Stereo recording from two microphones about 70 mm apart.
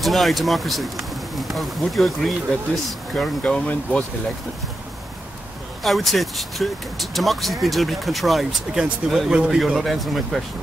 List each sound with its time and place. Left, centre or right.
0.0 s speech: centre
3.4 s speech: centre
5.9 s speech: centre
9.3 s speech: centre
9.8 s speech: centre